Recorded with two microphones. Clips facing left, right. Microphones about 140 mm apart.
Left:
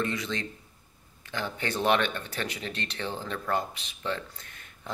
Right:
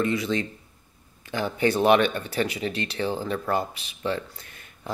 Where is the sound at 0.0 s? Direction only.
10° right (ahead or behind).